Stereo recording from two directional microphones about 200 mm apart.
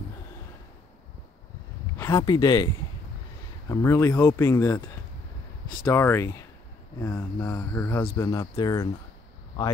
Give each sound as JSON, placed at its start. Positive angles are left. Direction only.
{"t": 2.0, "sound": "speech", "side_deg": 15}